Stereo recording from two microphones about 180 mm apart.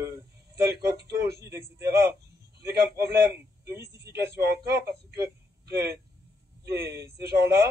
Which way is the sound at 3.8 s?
65° right (ahead or behind).